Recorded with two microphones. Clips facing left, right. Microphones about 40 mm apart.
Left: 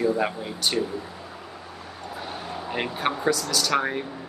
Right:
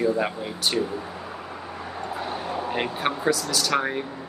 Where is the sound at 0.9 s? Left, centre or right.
Centre.